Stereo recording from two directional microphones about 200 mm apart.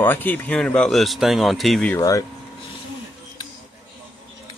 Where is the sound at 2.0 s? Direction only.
15° left (ahead or behind).